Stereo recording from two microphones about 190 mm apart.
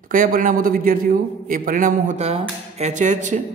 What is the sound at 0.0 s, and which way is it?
A man's voice, 45° right (ahead or behind).